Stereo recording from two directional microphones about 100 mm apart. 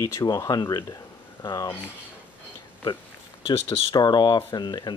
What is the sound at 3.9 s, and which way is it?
Speech, 45° left (ahead or behind).